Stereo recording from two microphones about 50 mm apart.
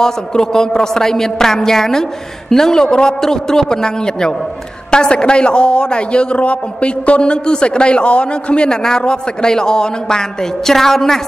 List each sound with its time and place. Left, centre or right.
0.0 s a woman's voice: centre